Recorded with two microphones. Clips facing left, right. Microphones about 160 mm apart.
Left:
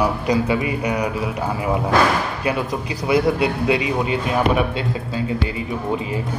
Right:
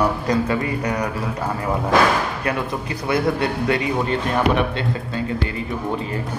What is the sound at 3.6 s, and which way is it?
Speech, 15° left (ahead or behind).